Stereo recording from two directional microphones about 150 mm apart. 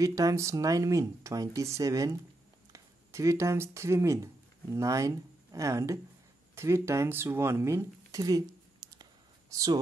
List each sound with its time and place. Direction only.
0.0 s speech: 25° right (ahead or behind)
9.5 s speech: 25° right (ahead or behind)